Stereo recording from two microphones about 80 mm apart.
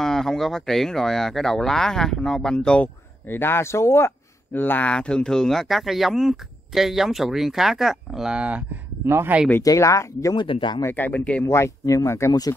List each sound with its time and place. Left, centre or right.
0.0 s speech: centre
3.3 s speech: left; by 8.6 s centre
9.0 s speech: right
9.6 s speech: left
10.3 s speech: left
10.8 s speech: left
11.4 s speech: left